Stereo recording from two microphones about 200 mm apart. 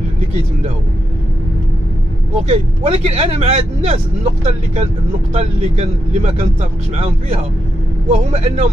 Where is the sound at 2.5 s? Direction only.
30° right (ahead or behind).